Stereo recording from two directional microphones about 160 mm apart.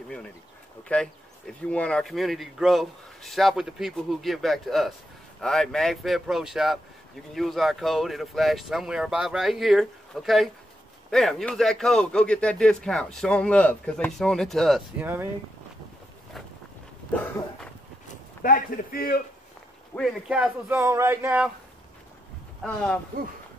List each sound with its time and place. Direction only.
0.8 s speech: 5° left (ahead or behind)
15.0 s speech: 15° right (ahead or behind)
18.4 s a man's voice: 60° left (ahead or behind)
20.0 s speech: 5° right (ahead or behind)
22.6 s speech: 5° left (ahead or behind)